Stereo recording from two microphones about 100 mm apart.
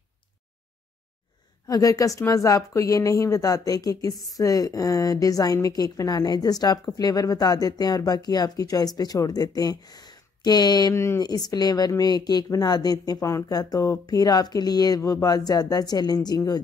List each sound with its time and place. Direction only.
1.7 s speech: 35° left (ahead or behind)
10.9 s speech: 30° left (ahead or behind)
11.2 s speech: 40° left (ahead or behind)